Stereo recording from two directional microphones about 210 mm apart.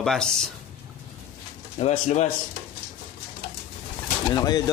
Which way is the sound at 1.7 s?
35° left (ahead or behind).